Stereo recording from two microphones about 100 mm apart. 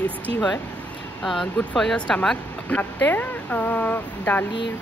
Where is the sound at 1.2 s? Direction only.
Centre (ahead or behind).